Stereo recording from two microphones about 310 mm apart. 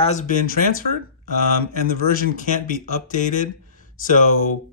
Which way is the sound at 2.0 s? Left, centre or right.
Left.